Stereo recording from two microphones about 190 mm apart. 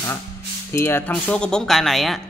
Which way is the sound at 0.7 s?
10° left (ahead or behind).